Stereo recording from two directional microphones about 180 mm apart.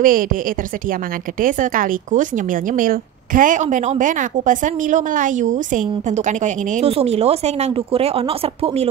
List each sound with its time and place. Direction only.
0.0 s speech: 50° right (ahead or behind); by 8.8 s 30° right (ahead or behind)